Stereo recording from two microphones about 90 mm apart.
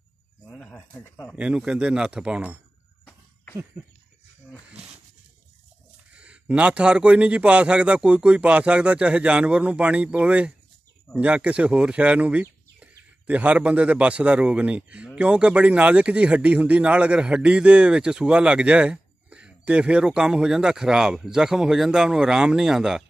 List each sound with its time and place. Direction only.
0.5 s speech: 15° left (ahead or behind)
1.0 s speech: 35° left (ahead or behind)
1.3 s speech: 10° right (ahead or behind)
6.1 s speech: 15° right (ahead or behind)